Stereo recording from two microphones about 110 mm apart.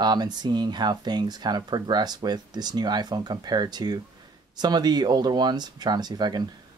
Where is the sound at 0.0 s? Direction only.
40° right (ahead or behind).